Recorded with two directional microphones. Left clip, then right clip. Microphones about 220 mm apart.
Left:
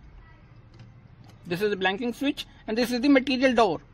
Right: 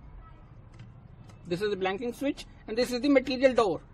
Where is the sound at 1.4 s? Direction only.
35° left (ahead or behind).